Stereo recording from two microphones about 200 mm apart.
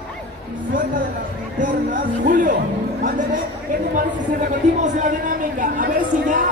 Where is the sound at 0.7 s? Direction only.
45° right (ahead or behind).